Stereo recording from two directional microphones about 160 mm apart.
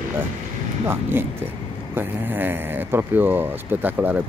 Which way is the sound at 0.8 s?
15° right (ahead or behind).